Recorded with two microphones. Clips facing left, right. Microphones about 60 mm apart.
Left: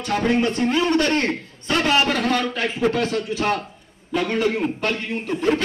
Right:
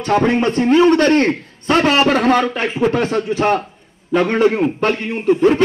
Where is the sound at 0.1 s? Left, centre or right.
Right.